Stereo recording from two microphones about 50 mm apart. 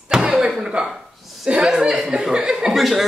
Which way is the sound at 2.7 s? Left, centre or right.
Centre.